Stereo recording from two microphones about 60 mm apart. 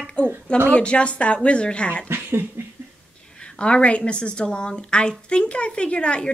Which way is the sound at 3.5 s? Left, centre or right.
Centre.